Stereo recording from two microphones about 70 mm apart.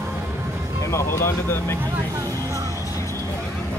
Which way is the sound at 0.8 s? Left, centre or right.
Left.